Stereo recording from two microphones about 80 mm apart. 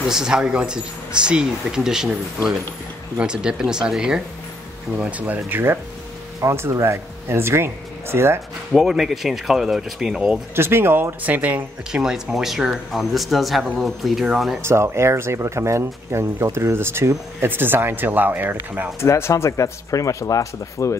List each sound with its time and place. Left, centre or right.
0.1 s speech: centre
4.9 s speech: centre
6.4 s speech: right
8.7 s speech: centre
10.5 s speech: right
12.0 s speech: centre
14.6 s speech: right
18.9 s speech: left